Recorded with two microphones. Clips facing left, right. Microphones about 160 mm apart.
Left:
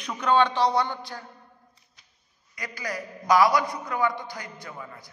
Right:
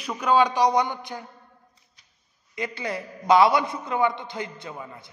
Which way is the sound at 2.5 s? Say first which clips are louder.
Right 4 dB; 25° right (ahead or behind).